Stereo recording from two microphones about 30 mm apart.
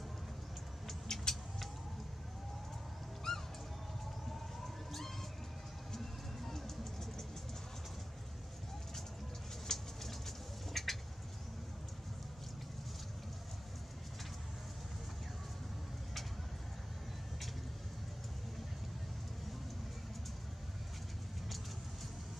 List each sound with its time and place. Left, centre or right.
1.0 s vehicle: centre
3.3 s music: centre
5.9 s music: centre
9.7 s bird: centre